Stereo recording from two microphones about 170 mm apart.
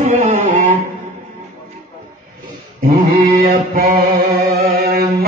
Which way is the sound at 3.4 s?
50° right (ahead or behind).